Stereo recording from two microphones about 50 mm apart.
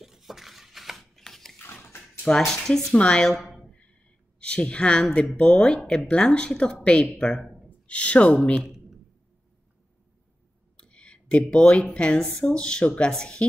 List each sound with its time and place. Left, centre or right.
0.0 s a sound: centre
1.6 s dog: left
2.2 s speech: centre
2.9 s a woman's voice: left
3.3 s a sound: centre
4.4 s a woman's voice: left
7.8 s a woman's voice: left
10.8 s a woman's voice: left
12.8 s a woman's voice: left
13.1 s speech: centre